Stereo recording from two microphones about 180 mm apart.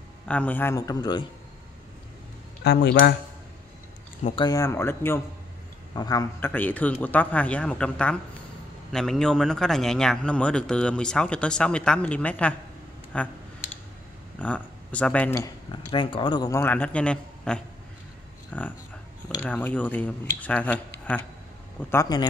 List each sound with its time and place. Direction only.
0.3 s speech: 10° left (ahead or behind)
2.6 s speech: 70° left (ahead or behind)
4.4 s speech: 20° left (ahead or behind)
6.5 s speech: 10° left (ahead or behind)
14.4 s speech: 5° left (ahead or behind)
22.1 s speech: 25° left (ahead or behind)